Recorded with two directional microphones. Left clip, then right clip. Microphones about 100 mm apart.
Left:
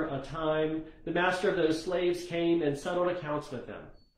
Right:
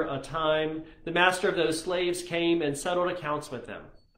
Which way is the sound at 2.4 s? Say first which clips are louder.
Right 2 dB; centre (ahead or behind).